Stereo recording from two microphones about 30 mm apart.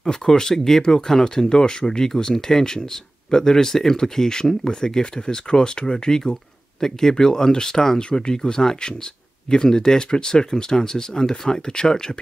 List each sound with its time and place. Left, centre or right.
0.1 s speech: left
8.0 s speech: left
8.4 s speech: left